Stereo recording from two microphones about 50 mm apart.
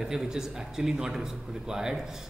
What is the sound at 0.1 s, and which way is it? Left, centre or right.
A man's voice, centre.